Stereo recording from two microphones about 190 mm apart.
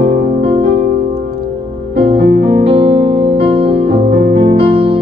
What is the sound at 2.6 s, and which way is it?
Music, 30° right (ahead or behind).